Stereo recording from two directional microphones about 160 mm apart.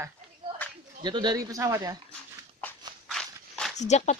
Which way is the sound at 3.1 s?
5° left (ahead or behind).